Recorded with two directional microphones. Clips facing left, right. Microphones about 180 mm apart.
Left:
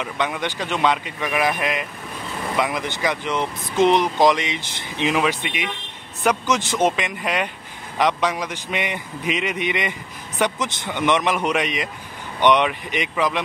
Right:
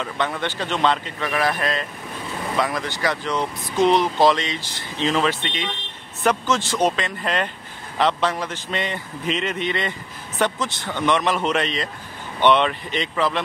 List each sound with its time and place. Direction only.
0.0 s a man's voice: 15° left (ahead or behind)